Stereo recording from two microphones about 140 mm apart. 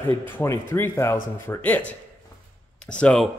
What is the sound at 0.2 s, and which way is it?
Speech, 15° left (ahead or behind).